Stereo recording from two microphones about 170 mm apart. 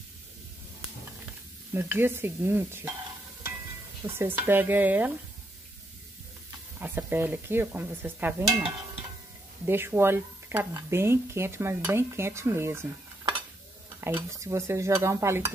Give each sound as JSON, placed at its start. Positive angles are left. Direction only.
{"t": 1.7, "sound": "speech", "side_deg": -10}
{"t": 4.0, "sound": "speech", "side_deg": -15}
{"t": 6.8, "sound": "speech", "side_deg": -10}
{"t": 9.7, "sound": "speech", "side_deg": -15}
{"t": 14.0, "sound": "speech", "side_deg": -15}